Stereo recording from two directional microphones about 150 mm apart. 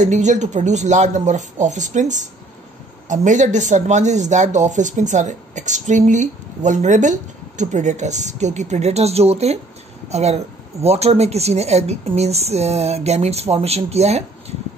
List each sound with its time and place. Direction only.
0.0 s speech: 50° right (ahead or behind)